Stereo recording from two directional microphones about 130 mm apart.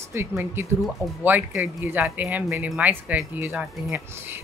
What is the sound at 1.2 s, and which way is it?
A woman's voice, 15° right (ahead or behind).